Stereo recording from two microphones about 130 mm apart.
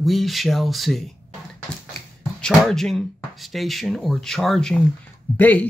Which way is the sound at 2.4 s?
5° left (ahead or behind).